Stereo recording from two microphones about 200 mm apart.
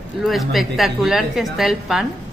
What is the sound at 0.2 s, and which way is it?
A woman's voice, centre (ahead or behind).